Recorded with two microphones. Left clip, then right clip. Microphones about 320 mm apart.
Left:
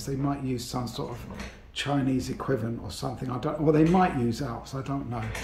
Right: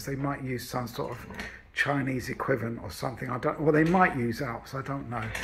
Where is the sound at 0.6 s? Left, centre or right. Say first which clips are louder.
Even; centre.